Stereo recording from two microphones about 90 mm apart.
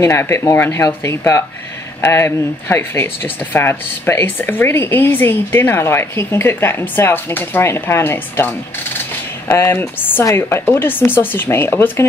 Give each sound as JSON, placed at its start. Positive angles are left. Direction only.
{"t": 0.0, "sound": "speech", "side_deg": 30}